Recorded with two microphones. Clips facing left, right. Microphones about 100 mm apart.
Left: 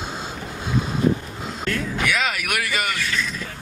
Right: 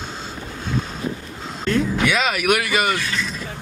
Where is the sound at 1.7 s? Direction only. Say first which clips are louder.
Right 5 dB; 20° right (ahead or behind).